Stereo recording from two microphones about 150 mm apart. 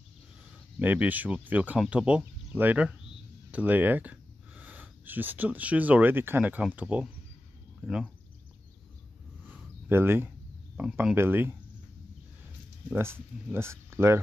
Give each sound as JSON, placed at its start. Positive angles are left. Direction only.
{"t": 0.7, "sound": "speech", "side_deg": -10}
{"t": 9.5, "sound": "a sound", "side_deg": -15}
{"t": 10.8, "sound": "speech", "side_deg": -10}
{"t": 12.9, "sound": "speech", "side_deg": -15}